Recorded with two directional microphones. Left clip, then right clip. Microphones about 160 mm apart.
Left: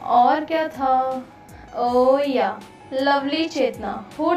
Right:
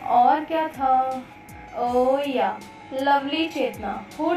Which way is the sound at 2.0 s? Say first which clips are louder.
Left 3 dB; 35° left (ahead or behind).